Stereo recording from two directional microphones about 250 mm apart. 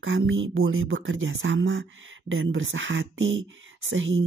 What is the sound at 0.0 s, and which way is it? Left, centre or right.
Speech, right.